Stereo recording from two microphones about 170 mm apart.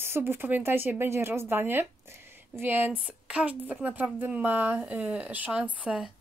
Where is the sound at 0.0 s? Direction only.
15° right (ahead or behind).